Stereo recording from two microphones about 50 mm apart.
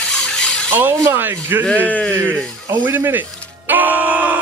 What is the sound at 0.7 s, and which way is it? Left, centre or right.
Speech, right.